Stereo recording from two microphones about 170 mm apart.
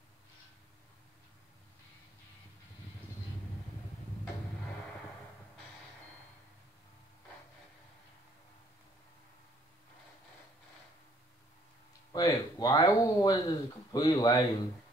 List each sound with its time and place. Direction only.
12.1 s speech: 25° left (ahead or behind)